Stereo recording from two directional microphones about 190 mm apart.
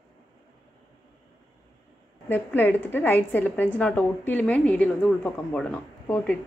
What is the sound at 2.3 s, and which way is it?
A woman's voice, 10° left (ahead or behind).